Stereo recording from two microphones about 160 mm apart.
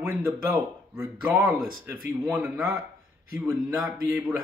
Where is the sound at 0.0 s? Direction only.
15° right (ahead or behind).